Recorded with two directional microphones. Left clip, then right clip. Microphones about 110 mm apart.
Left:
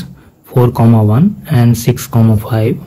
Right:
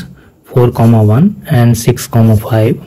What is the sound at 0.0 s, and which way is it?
Speech, 30° right (ahead or behind).